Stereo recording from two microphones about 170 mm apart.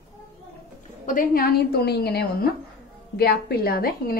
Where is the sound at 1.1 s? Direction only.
55° left (ahead or behind).